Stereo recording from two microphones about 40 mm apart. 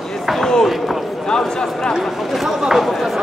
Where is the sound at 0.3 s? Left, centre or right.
Centre.